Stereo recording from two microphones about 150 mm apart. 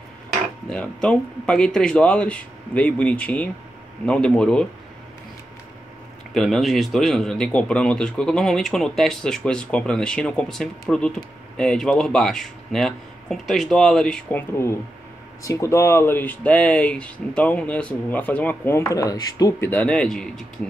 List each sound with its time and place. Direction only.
0.7 s a man's voice: 5° left (ahead or behind)
6.3 s a man's voice: centre (ahead or behind)
14.5 s speech: 15° left (ahead or behind)
19.7 s a man's voice: 10° left (ahead or behind)